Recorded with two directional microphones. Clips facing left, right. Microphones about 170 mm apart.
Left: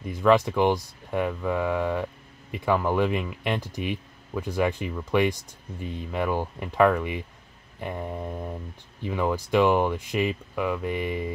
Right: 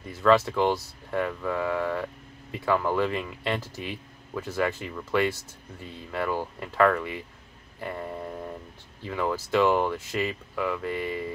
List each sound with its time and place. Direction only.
0.0 s speech: 15° left (ahead or behind)